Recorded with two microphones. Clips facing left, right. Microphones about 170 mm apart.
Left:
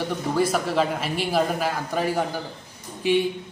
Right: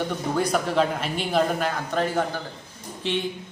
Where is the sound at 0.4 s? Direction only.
Centre (ahead or behind).